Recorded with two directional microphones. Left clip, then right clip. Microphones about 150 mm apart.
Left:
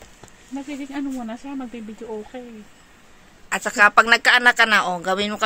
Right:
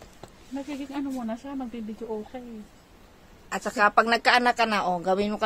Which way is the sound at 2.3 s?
40° left (ahead or behind).